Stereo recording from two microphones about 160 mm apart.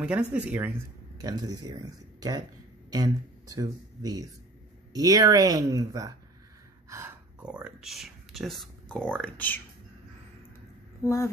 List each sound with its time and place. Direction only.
0.0 s speech: 5° right (ahead or behind); by 6.1 s 20° right (ahead or behind)
6.9 s a sound: 15° right (ahead or behind)
7.4 s speech: 5° right (ahead or behind); by 9.6 s 10° left (ahead or behind)